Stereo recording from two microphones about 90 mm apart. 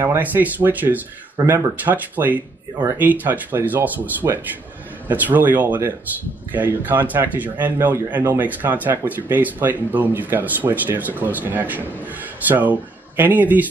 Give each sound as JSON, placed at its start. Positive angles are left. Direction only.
{"t": 0.0, "sound": "speech", "side_deg": -25}